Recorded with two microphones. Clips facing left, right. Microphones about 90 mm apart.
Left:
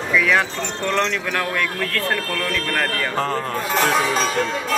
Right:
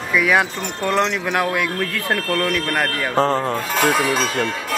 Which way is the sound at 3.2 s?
25° right (ahead or behind).